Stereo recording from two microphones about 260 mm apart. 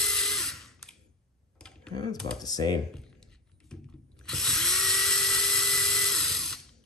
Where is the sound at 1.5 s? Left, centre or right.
Centre.